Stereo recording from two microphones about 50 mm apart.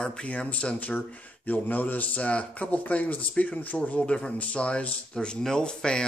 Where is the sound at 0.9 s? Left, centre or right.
Left.